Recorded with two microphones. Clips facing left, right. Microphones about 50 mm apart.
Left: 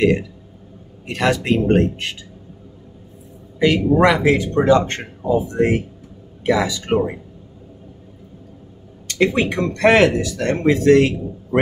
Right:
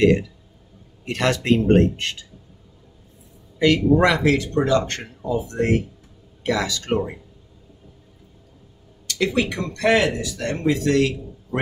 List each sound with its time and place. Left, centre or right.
1.0 s speech: centre
3.5 s a man's voice: centre
9.0 s speech: left